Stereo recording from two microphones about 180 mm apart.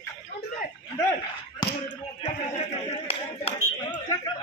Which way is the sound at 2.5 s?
35° left (ahead or behind).